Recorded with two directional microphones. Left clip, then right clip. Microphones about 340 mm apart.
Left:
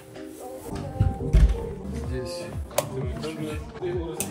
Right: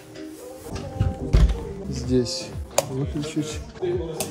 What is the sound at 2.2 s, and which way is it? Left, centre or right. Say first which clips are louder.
Music: right 3 dB; centre.